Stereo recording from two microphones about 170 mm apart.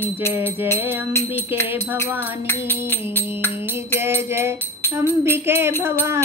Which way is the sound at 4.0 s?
15° right (ahead or behind).